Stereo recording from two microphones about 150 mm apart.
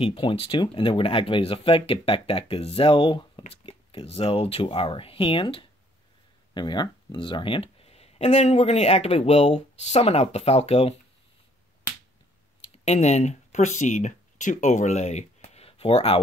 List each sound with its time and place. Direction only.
0.0 s speech: 35° left (ahead or behind)
12.8 s speech: 45° left (ahead or behind)